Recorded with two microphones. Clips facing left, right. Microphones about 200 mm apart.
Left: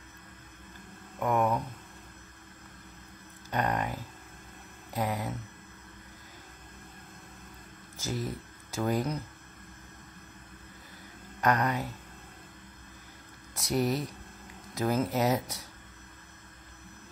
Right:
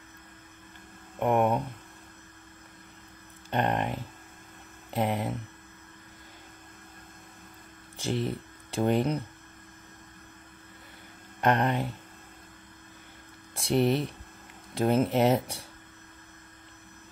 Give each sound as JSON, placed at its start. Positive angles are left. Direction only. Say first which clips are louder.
{"t": 1.2, "sound": "speech", "louder": "right 3 dB", "side_deg": -25}
{"t": 3.4, "sound": "speech", "louder": "right 3 dB", "side_deg": -25}
{"t": 8.0, "sound": "speech", "louder": "right 5 dB", "side_deg": -30}
{"t": 11.4, "sound": "speech", "louder": "right 2 dB", "side_deg": -25}
{"t": 13.6, "sound": "speech", "louder": "right 4 dB", "side_deg": -30}